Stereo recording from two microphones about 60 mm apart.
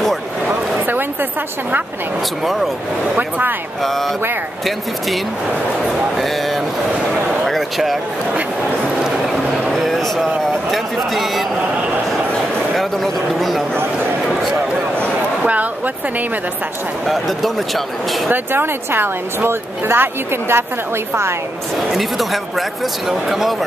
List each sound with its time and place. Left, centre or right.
0.5 s a sound: right
3.2 s speech: right
3.8 s speech: centre
5.9 s speech: centre
7.4 s a sound: centre
9.3 s a sound: centre
10.7 s speech: centre
12.7 s speech: centre
15.4 s speech: right
17.0 s speech: centre
18.3 s speech: right
21.9 s speech: centre